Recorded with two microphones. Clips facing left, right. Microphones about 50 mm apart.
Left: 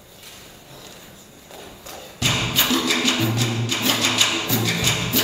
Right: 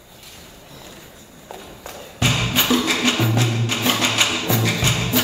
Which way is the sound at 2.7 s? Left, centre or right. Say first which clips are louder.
Right 3 dB; right.